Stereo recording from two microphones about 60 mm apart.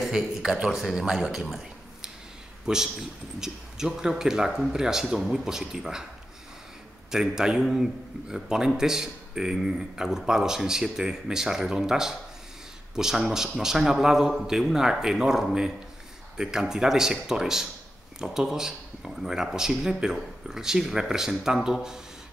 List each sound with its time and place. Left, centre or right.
0.0 s a man's voice: centre
7.1 s a man's voice: centre